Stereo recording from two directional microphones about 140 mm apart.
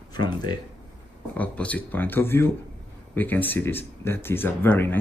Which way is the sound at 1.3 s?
10° left (ahead or behind).